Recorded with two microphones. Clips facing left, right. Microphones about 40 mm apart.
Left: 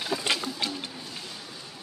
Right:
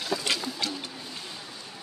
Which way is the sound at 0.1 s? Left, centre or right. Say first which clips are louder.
Even; centre.